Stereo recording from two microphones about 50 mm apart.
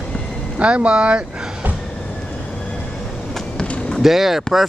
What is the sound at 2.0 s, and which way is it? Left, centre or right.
Train, left.